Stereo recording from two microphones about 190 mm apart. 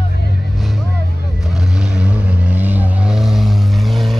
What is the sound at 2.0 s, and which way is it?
Vehicle, 5° right (ahead or behind).